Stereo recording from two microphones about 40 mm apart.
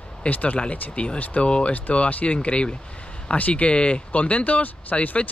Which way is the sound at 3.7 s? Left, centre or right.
Left.